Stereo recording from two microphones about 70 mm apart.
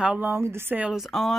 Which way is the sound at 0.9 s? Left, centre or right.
Centre.